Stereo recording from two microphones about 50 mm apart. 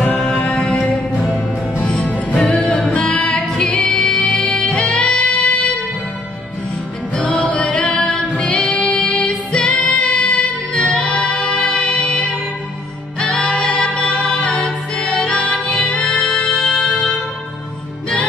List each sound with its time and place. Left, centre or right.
0.0 s music: left
2.0 s music: left
3.4 s music: centre
7.2 s music: left
7.8 s singing: centre
8.9 s music: centre
15.1 s music: centre